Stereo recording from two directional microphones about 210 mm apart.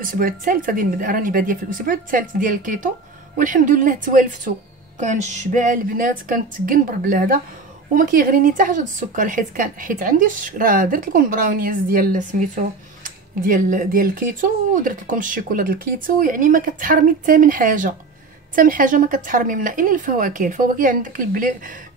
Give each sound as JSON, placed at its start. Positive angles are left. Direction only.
{"t": 0.0, "sound": "speech", "side_deg": -40}